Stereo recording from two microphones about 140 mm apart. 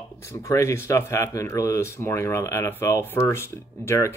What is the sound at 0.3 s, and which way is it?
Speech, 20° left (ahead or behind).